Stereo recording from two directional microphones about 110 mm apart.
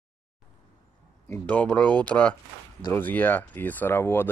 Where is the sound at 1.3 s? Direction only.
15° left (ahead or behind).